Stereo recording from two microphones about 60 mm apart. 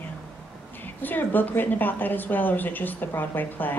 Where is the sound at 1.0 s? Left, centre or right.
Left.